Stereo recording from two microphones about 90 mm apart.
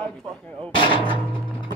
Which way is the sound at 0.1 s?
5° left (ahead or behind).